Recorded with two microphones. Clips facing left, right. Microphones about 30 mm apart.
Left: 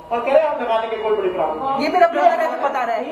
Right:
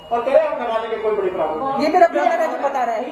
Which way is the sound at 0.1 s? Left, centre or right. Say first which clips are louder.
Even; left.